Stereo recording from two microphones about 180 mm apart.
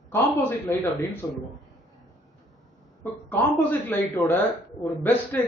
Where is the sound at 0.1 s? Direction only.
10° left (ahead or behind).